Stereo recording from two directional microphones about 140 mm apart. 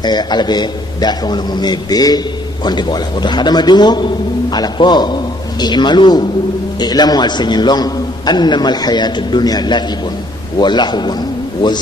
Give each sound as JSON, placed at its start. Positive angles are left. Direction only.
{"t": 0.0, "sound": "a man's voice", "side_deg": 30}